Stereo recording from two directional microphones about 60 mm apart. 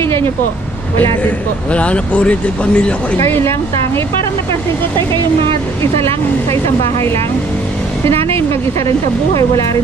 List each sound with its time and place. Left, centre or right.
0.0 s vehicle: left
0.9 s speech: left
3.3 s speech: left
5.8 s speech: left
8.8 s speech: left